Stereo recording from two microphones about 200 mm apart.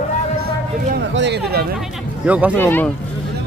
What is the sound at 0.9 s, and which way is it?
Speech, 60° right (ahead or behind).